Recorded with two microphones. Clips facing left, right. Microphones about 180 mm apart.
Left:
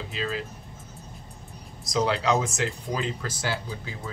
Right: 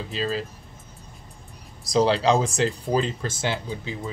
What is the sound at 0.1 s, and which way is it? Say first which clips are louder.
Speech: right 4 dB; 35° right (ahead or behind).